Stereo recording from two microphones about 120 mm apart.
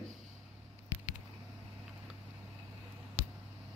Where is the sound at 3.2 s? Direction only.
55° left (ahead or behind).